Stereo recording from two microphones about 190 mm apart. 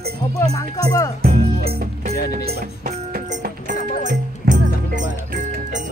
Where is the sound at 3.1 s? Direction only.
45° right (ahead or behind).